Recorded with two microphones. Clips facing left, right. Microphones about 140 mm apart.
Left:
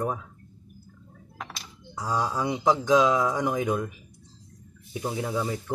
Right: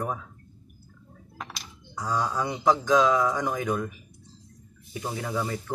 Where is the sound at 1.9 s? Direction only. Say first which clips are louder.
Even; 10° left (ahead or behind).